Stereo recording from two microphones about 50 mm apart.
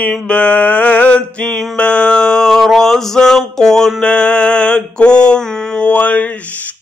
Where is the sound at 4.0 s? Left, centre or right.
Left.